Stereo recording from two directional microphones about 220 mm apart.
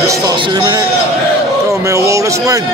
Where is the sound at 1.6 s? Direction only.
15° right (ahead or behind).